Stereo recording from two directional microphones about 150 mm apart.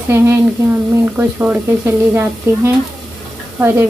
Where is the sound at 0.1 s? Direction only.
15° right (ahead or behind).